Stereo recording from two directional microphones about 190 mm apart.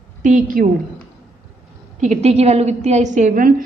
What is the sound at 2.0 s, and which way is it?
A woman's voice, 35° right (ahead or behind).